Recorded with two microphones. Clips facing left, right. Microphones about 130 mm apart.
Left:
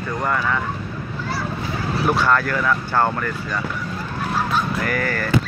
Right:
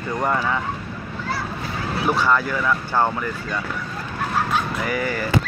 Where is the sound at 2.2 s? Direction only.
10° right (ahead or behind).